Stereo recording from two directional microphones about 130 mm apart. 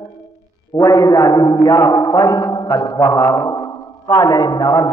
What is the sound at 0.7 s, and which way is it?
A man's voice, 30° left (ahead or behind).